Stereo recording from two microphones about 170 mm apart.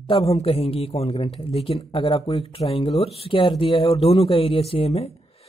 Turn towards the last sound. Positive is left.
turn(degrees=35)  # may be behind; listen again after turning